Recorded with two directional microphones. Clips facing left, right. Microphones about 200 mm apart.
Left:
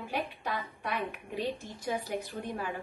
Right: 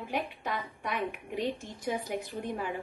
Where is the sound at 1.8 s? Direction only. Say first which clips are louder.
Right 1 dB; 20° right (ahead or behind).